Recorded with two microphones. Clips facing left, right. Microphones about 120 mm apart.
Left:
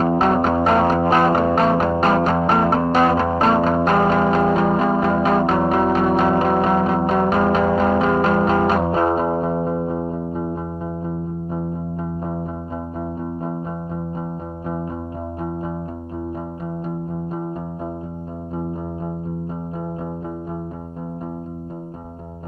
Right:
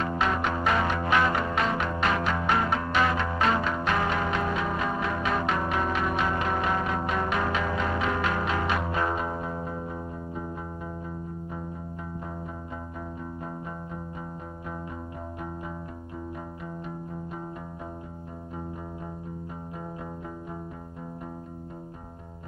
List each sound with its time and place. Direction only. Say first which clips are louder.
0.0 s music: left 10 dB; 40° left (ahead or behind)